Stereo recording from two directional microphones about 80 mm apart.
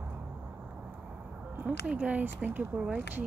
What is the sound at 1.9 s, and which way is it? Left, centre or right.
Speech, centre.